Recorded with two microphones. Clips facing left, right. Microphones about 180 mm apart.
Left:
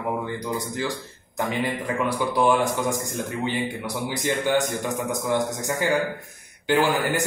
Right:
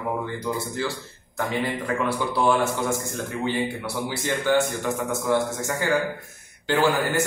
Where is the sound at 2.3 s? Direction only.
15° left (ahead or behind).